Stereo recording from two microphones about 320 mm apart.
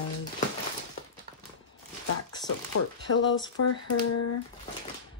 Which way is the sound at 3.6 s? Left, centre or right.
Left.